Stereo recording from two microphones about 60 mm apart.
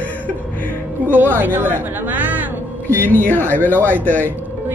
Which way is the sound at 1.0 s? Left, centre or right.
Right.